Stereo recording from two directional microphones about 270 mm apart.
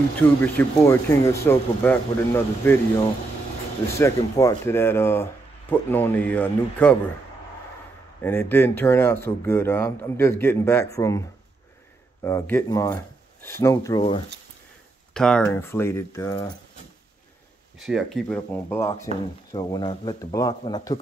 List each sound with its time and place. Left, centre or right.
0.4 s speech: centre
3.9 s speech: centre
8.2 s speech: centre
15.1 s speech: centre
17.7 s speech: centre